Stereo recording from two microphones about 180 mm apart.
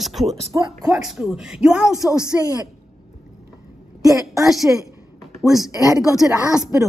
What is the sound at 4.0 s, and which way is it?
A woman's voice, 20° right (ahead or behind).